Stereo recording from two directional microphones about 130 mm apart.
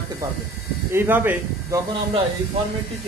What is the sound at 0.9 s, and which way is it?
Speech, 15° right (ahead or behind).